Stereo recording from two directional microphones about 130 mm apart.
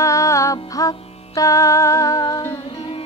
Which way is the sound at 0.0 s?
25° left (ahead or behind).